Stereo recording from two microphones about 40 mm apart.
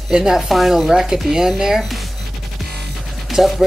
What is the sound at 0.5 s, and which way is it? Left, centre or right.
Speech, centre.